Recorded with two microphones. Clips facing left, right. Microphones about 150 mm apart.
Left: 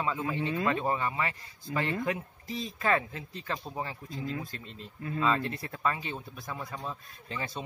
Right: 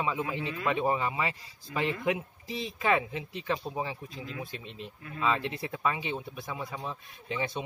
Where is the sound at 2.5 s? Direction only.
90° right.